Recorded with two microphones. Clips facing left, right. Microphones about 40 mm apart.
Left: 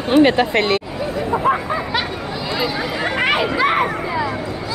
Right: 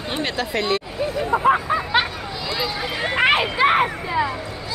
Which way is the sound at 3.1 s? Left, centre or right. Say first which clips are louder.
Right 1 dB; right.